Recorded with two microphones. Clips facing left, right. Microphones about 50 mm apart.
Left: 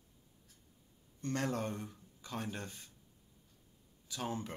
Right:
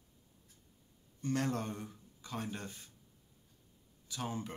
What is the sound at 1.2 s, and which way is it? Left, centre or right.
Speech, centre.